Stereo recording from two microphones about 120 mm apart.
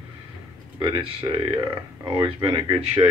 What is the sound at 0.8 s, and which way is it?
Speech, 45° right (ahead or behind).